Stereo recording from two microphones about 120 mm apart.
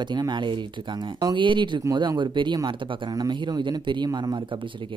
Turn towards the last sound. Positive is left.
turn(degrees=-35)  # may be behind; listen again after turning